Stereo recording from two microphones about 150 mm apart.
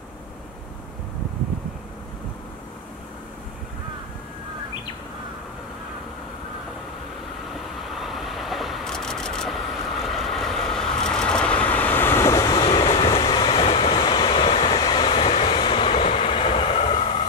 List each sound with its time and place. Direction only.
7.9 s vehicle: centre (ahead or behind); by 12.6 s 25° left (ahead or behind)
12.6 s vehicle: 40° left (ahead or behind)
14.8 s train: 30° left (ahead or behind)